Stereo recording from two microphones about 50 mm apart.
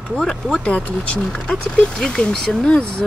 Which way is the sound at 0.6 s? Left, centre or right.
Left.